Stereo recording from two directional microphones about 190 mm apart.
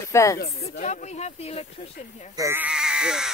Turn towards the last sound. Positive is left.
turn(degrees=-5)  # may be behind; listen again after turning